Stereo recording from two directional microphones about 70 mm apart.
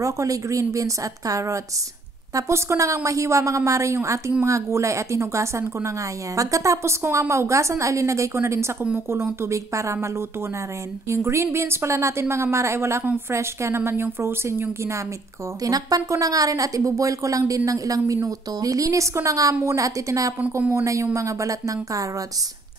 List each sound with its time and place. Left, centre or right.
0.0 s a woman's voice: right
11.1 s a woman's voice: right
15.6 s a woman's voice: right